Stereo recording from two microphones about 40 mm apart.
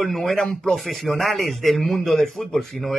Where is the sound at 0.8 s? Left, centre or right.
Centre.